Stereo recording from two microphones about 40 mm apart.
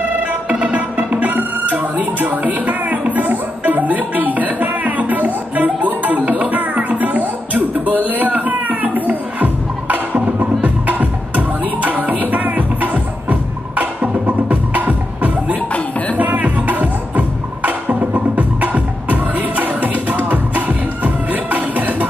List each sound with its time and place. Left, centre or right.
0.3 s music: right